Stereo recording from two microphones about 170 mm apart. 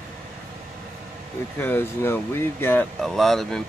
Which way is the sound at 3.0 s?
Centre (ahead or behind).